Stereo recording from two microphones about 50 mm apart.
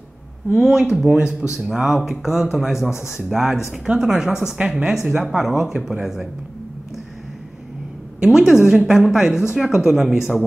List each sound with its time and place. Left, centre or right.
0.6 s a woman's voice: centre
1.0 s a woman's voice: right
8.2 s a woman's voice: centre